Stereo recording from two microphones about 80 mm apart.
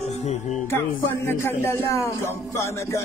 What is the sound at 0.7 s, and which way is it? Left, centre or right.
A man's voice, left.